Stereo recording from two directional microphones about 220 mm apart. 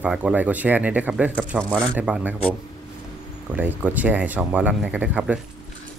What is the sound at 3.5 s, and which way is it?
Speech, 5° right (ahead or behind).